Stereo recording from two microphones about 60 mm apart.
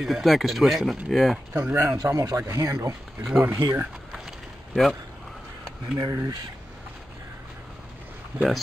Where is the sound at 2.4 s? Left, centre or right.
Right.